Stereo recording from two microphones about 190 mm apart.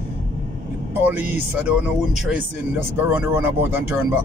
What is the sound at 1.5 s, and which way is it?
Speech, 10° right (ahead or behind).